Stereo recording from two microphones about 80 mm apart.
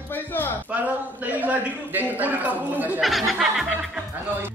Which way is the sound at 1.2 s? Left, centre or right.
Right.